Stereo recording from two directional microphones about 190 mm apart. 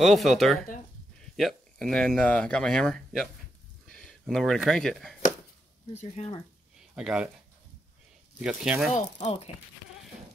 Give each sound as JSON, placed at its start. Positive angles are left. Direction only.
{"t": 0.0, "sound": "speech", "side_deg": 0}
{"t": 5.9, "sound": "speech", "side_deg": 35}
{"t": 7.0, "sound": "speech", "side_deg": -5}
{"t": 8.4, "sound": "speech", "side_deg": -5}
{"t": 8.9, "sound": "speech", "side_deg": 40}